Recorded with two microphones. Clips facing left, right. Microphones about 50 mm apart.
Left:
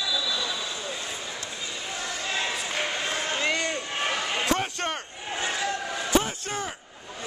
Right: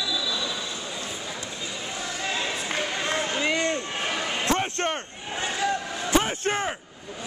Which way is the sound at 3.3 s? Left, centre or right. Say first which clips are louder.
Even; centre.